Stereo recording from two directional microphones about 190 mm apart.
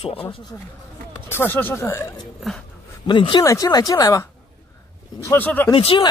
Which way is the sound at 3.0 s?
25° left (ahead or behind).